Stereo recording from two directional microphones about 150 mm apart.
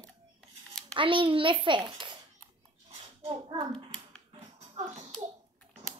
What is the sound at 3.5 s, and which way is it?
Speech, 35° right (ahead or behind).